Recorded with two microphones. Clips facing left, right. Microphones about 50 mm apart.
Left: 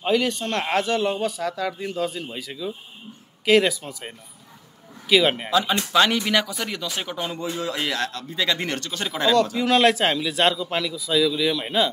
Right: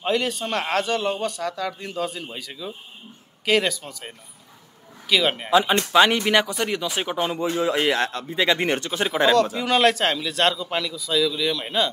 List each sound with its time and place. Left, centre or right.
0.0 s speech: centre
0.7 s speech: centre
5.1 s speech: centre
5.5 s speech: right
9.3 s speech: centre